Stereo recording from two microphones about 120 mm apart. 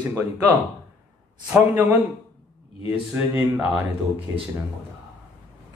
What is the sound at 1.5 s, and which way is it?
A man's voice, 15° right (ahead or behind).